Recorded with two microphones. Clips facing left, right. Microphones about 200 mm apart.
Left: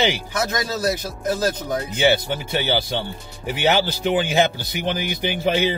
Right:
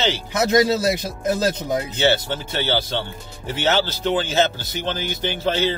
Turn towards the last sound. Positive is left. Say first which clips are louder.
# left 1 dB
turn(degrees=15)  # may be behind; listen again after turning